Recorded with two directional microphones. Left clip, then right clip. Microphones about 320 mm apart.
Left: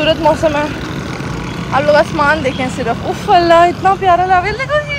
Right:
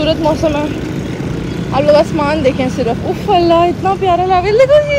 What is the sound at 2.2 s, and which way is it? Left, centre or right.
Speech, centre.